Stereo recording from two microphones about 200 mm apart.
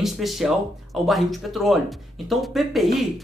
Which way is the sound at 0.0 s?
Centre (ahead or behind).